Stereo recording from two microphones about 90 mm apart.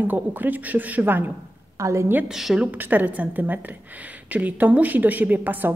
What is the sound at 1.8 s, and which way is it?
Speech, 35° right (ahead or behind).